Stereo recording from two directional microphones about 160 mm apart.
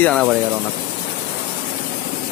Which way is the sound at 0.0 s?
5° left (ahead or behind).